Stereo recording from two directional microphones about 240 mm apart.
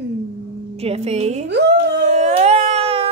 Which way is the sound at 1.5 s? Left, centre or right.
Right.